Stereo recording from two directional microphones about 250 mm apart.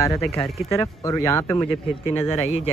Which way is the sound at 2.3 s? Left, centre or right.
Left.